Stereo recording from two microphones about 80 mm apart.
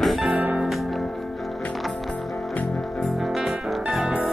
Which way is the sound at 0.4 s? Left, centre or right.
Centre.